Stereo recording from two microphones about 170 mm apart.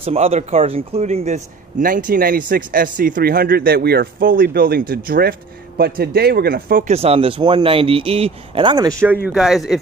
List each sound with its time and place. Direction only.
0.0 s speech: 35° right (ahead or behind)
1.8 s speech: 50° right (ahead or behind)
6.9 s speech: 35° right (ahead or behind)
9.0 s speech: 10° right (ahead or behind)